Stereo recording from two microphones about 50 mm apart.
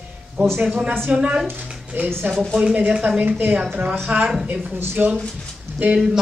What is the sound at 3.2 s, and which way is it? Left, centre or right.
A woman's voice, right.